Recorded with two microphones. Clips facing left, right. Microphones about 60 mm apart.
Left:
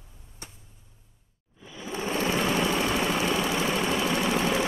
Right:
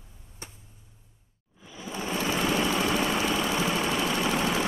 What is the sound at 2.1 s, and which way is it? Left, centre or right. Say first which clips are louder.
Vehicle: left 1 dB; centre.